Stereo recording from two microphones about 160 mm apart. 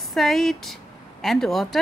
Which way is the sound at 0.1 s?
Centre (ahead or behind).